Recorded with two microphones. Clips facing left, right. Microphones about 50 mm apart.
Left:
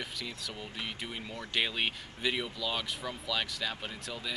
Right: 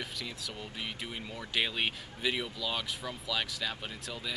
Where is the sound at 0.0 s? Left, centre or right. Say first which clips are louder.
Even; centre.